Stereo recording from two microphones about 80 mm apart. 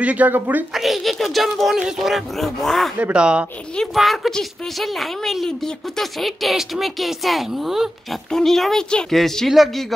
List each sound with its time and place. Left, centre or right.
0.0 s speech: centre
0.7 s a woman's voice: centre
3.0 s speech: centre
3.7 s a woman's voice: centre